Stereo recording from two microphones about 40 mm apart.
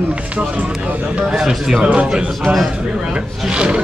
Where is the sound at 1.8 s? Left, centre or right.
Right.